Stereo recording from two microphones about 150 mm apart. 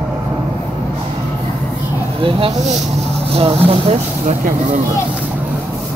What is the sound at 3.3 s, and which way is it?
Speech, 40° right (ahead or behind).